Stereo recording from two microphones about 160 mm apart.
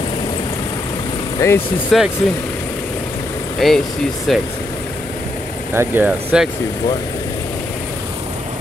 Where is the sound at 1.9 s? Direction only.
Centre (ahead or behind).